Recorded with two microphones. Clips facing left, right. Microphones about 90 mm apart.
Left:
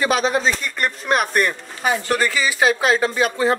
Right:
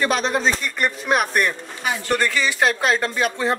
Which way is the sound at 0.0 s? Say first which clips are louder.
Left 2 dB; 5° left (ahead or behind).